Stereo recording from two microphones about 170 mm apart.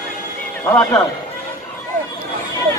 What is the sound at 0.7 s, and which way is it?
Speech, 15° left (ahead or behind).